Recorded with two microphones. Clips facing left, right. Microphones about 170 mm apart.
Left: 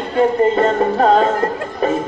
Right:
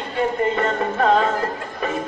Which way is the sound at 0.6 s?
35° left (ahead or behind).